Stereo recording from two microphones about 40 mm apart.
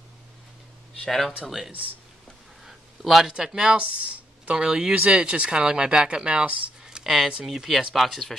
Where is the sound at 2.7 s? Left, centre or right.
Centre.